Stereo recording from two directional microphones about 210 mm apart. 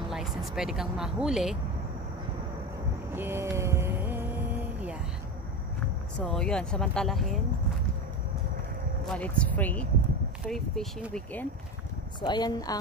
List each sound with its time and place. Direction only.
0.1 s speech: centre (ahead or behind)
3.2 s a sound: 10° right (ahead or behind)
6.1 s speech: 5° left (ahead or behind)
9.0 s speech: 5° left (ahead or behind)
12.2 s speech: 20° left (ahead or behind)